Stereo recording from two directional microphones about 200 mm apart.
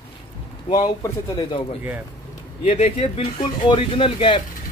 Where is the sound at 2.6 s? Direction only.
30° left (ahead or behind).